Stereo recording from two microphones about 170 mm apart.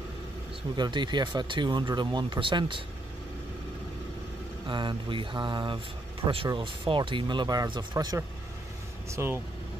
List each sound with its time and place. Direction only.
0.7 s speech: 25° right (ahead or behind)
4.6 s speech: 30° right (ahead or behind)